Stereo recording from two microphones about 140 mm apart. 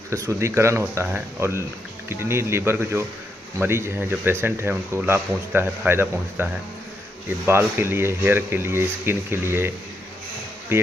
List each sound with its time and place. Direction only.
0.1 s speech: 20° right (ahead or behind)
10.7 s speech: 15° right (ahead or behind)